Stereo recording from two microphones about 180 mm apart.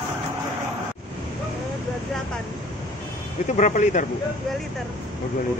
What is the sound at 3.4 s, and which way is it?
Speech, 40° left (ahead or behind).